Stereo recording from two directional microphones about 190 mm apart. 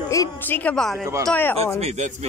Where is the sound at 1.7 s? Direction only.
35° right (ahead or behind).